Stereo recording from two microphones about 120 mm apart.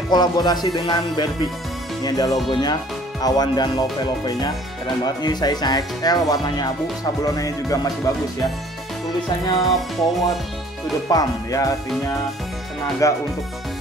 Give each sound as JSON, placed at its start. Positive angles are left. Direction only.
{"t": 0.1, "sound": "speech", "side_deg": 35}
{"t": 7.2, "sound": "music", "side_deg": 30}
{"t": 9.6, "sound": "music", "side_deg": 0}
{"t": 11.1, "sound": "speech", "side_deg": 30}
{"t": 13.0, "sound": "music", "side_deg": 25}